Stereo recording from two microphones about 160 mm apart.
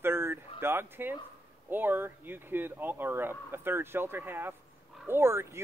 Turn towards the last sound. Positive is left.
turn(degrees=-15)  # may be behind; listen again after turning